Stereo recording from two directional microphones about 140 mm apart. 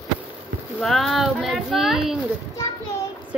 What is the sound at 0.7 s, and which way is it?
A woman's voice, centre (ahead or behind).